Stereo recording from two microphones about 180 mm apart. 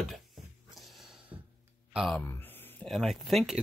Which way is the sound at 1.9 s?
Centre (ahead or behind).